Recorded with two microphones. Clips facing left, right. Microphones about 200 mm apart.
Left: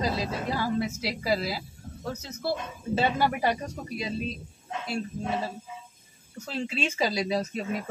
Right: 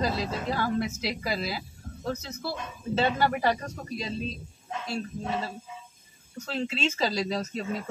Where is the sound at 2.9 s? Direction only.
10° left (ahead or behind).